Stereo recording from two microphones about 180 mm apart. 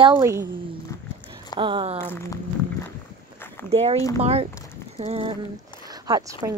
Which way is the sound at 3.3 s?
10° left (ahead or behind).